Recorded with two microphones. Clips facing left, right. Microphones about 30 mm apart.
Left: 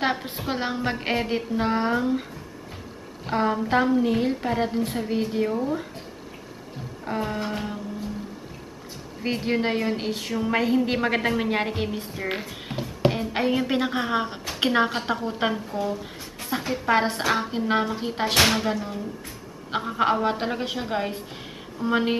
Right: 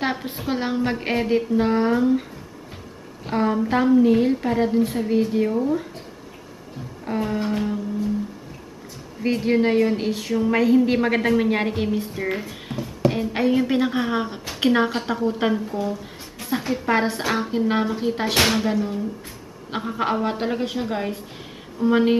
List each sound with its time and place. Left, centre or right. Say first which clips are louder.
0.0 s a woman's voice: even; centre
3.3 s a woman's voice: right 2 dB; centre
7.1 s a woman's voice: right 4 dB; centre
9.2 s a woman's voice: right 5 dB; centre
12.7 s a sound: right 2 dB; left
13.1 s a woman's voice: right 3 dB; centre